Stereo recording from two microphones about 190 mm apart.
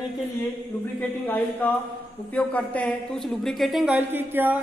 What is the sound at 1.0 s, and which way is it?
A woman's voice, 10° left (ahead or behind).